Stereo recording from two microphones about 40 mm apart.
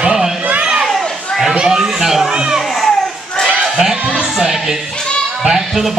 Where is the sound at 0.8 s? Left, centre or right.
Centre.